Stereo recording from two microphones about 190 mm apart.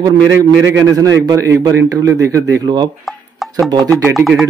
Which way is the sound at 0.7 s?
15° right (ahead or behind).